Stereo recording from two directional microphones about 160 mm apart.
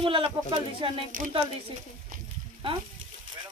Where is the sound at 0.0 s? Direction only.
35° right (ahead or behind).